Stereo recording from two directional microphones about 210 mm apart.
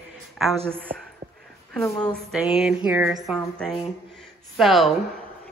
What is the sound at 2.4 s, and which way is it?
Speech, 5° right (ahead or behind).